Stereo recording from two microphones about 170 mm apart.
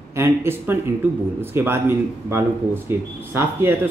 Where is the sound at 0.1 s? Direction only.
15° right (ahead or behind).